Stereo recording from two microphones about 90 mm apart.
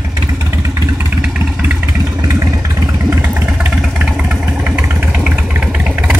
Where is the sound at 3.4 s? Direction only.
10° right (ahead or behind).